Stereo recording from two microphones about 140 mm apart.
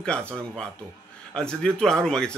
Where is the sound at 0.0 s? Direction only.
5° left (ahead or behind).